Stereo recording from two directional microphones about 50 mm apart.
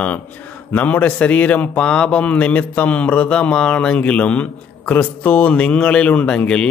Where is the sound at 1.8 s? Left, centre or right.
Centre.